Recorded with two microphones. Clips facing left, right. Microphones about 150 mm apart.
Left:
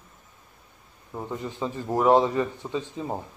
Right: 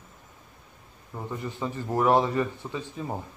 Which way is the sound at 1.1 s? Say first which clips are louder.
Left 2 dB; 15° left (ahead or behind).